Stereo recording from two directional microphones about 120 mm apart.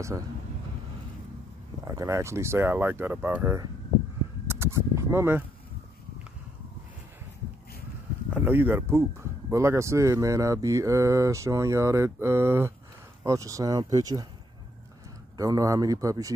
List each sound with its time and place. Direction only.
1.9 s speech: 25° right (ahead or behind)
4.5 s a sound: 20° right (ahead or behind)
8.3 s speech: 15° right (ahead or behind); by 14.2 s 30° right (ahead or behind)
15.3 s speech: 30° right (ahead or behind)